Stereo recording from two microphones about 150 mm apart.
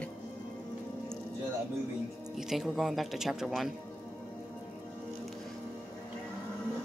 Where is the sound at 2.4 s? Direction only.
Centre (ahead or behind).